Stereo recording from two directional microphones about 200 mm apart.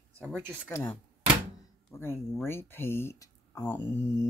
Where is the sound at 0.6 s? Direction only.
10° left (ahead or behind).